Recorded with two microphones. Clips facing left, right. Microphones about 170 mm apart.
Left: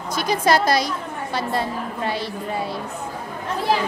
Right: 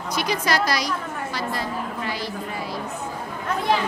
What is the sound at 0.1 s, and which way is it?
Speech, 50° left (ahead or behind).